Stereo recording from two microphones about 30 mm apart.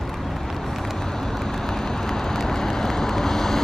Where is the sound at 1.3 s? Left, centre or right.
Centre.